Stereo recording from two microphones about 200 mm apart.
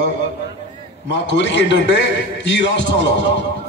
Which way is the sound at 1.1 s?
60° left (ahead or behind).